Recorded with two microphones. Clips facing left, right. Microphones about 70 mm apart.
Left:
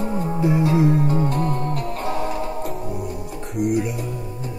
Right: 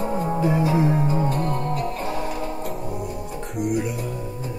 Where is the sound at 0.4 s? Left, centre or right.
Centre.